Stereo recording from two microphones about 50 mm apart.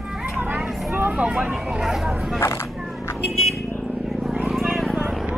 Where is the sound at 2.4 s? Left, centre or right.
Left.